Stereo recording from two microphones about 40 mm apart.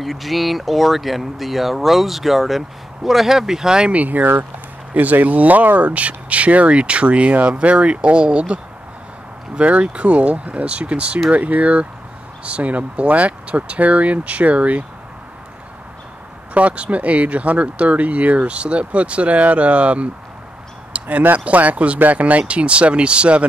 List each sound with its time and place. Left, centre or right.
0.0 s speech: centre
3.9 s speech: right
9.6 s speech: right
11.3 s speech: right
16.5 s speech: right